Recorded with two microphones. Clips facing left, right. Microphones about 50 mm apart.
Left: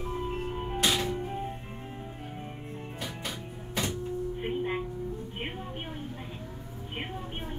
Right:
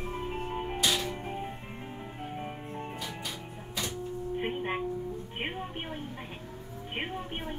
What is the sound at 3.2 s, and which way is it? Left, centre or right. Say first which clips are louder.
Music: left 2 dB; left.